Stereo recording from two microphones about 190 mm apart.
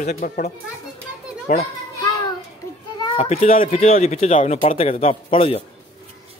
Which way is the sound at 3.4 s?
45° left (ahead or behind).